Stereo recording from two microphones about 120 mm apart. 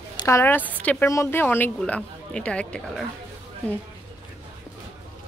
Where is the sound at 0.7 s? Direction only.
10° left (ahead or behind).